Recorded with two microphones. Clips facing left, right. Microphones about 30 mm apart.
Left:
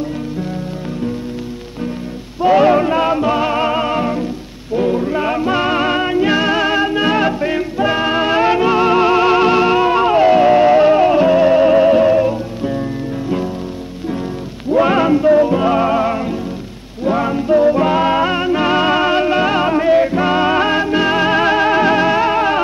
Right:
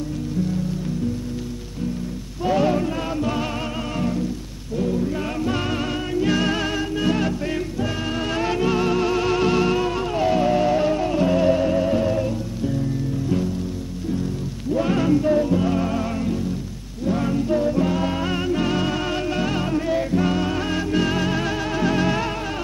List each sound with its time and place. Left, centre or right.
2.4 s music: left
14.7 s music: left